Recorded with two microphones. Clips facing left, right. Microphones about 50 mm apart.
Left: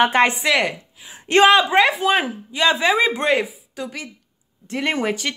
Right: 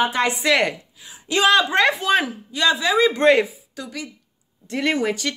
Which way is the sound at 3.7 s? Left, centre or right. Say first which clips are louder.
Left 2 dB; left.